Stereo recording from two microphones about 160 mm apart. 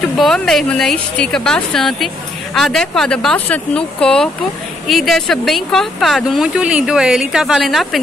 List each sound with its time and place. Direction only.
0.0 s speech: centre (ahead or behind)